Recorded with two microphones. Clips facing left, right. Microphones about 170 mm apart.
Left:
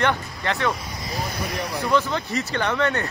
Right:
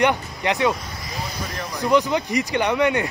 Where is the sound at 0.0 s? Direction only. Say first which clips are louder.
Right 3 dB; 15° right (ahead or behind).